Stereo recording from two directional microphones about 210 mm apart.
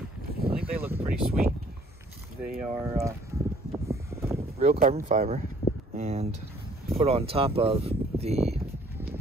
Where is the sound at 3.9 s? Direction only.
15° right (ahead or behind).